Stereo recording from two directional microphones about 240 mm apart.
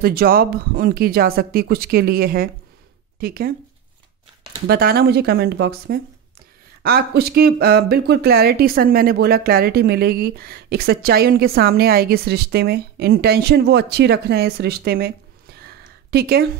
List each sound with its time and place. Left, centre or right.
0.0 s speech: right
4.6 s speech: right
15.6 s a sound: right